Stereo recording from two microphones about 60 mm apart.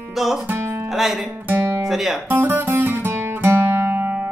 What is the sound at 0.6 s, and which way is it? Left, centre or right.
Music, right.